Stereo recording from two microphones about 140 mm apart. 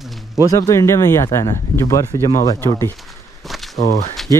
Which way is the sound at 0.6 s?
20° left (ahead or behind).